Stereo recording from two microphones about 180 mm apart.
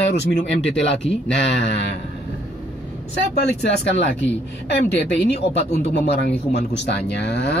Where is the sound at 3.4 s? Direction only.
70° left (ahead or behind).